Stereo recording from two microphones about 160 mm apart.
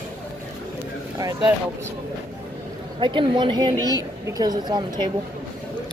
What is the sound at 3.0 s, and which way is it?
A woman's voice, 30° right (ahead or behind).